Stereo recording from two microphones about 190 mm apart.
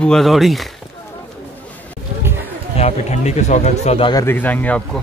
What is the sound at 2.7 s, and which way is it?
Speech, 35° left (ahead or behind).